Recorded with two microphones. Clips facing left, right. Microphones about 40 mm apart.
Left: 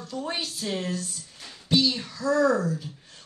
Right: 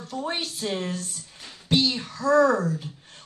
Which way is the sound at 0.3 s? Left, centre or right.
Right.